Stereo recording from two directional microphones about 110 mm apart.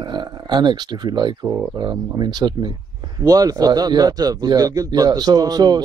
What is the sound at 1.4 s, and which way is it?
Speech, 20° right (ahead or behind).